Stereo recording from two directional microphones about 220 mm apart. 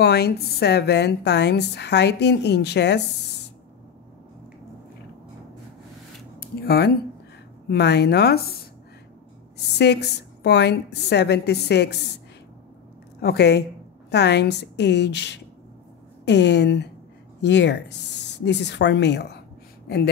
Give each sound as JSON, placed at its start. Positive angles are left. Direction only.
{"t": 0.0, "sound": "a woman's voice", "side_deg": 50}
{"t": 6.4, "sound": "a sound", "side_deg": 45}
{"t": 7.6, "sound": "a woman's voice", "side_deg": 50}
{"t": 9.8, "sound": "a woman's voice", "side_deg": 50}
{"t": 13.2, "sound": "a woman's voice", "side_deg": 45}